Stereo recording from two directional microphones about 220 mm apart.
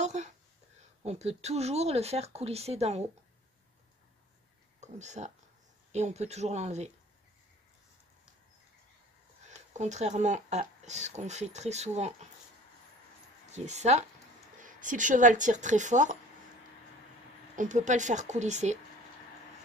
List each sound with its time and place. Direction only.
0.0 s a sound: 30° right (ahead or behind)
1.0 s speech: 30° right (ahead or behind)
4.7 s speech: 30° right (ahead or behind)
9.8 s speech: 30° right (ahead or behind)
13.7 s speech: 30° right (ahead or behind)
17.6 s speech: 35° right (ahead or behind)